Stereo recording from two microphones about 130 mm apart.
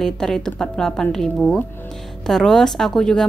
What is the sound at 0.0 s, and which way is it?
Speech, 5° left (ahead or behind).